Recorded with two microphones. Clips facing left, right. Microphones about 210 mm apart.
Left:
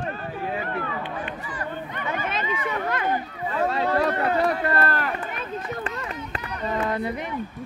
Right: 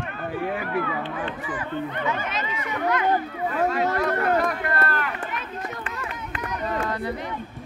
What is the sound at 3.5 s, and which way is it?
Speech, 30° left (ahead or behind).